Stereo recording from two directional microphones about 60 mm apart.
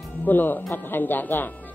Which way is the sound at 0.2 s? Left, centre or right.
Left.